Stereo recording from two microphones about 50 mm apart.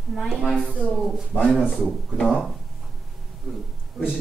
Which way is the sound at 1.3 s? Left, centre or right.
Left.